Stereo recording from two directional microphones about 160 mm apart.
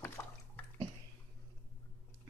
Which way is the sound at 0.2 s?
20° left (ahead or behind).